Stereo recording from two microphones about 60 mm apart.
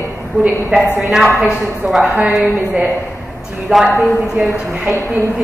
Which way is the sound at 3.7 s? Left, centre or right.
Centre.